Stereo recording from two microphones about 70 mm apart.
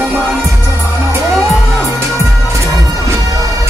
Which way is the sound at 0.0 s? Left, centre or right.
Right.